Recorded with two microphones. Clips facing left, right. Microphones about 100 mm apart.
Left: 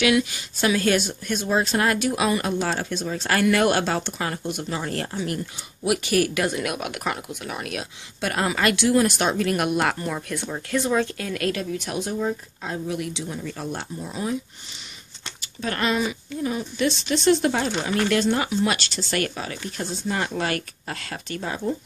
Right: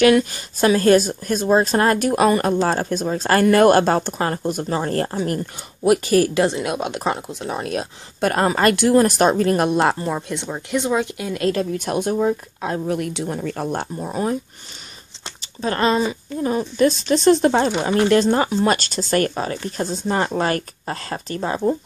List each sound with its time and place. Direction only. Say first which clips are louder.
0.0 s speech: right 6 dB; 45° right (ahead or behind); by 11.4 s 15° right (ahead or behind)
11.4 s speech: right 7 dB; 40° right (ahead or behind)
15.2 s speech: right 5 dB; 30° right (ahead or behind)